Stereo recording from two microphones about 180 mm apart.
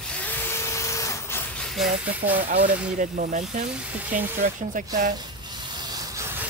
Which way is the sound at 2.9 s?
45° right (ahead or behind).